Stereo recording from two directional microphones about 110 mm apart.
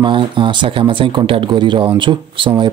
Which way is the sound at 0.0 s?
45° right (ahead or behind).